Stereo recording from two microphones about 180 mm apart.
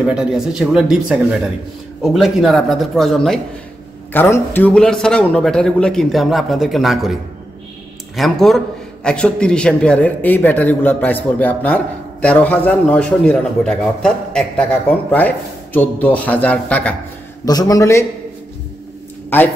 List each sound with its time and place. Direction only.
0.0 s a man's voice: 5° right (ahead or behind)
8.2 s a man's voice: centre (ahead or behind)
17.5 s a man's voice: 20° left (ahead or behind)
19.3 s a man's voice: 10° left (ahead or behind)